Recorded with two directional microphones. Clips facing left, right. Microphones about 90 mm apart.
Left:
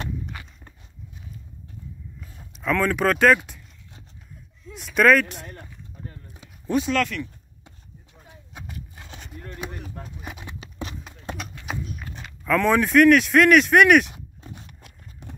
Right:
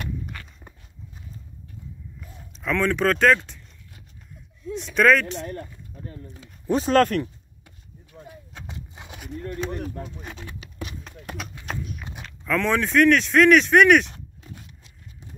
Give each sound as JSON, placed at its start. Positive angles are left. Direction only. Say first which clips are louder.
{"t": 0.0, "sound": "walk", "louder": "left 1 dB", "side_deg": 15}
{"t": 2.1, "sound": "speech", "louder": "right 1 dB", "side_deg": 0}
{"t": 4.7, "sound": "speech", "louder": "left 1 dB", "side_deg": 5}
{"t": 6.7, "sound": "speech", "louder": "right 4 dB", "side_deg": -40}
{"t": 7.6, "sound": "chop", "louder": "even", "side_deg": 20}
{"t": 8.6, "sound": "horse", "louder": "right 1 dB", "side_deg": -20}
{"t": 10.2, "sound": "a sound", "louder": "even", "side_deg": 15}
{"t": 10.6, "sound": "clip-clop", "louder": "left 2 dB", "side_deg": 30}
{"t": 11.4, "sound": "horse", "louder": "even", "side_deg": 0}
{"t": 12.2, "sound": "speech", "louder": "left 3 dB", "side_deg": 5}
{"t": 14.8, "sound": "horse", "louder": "left 2 dB", "side_deg": 60}